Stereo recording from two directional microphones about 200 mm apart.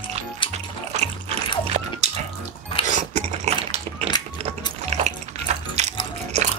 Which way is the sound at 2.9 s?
35° right (ahead or behind).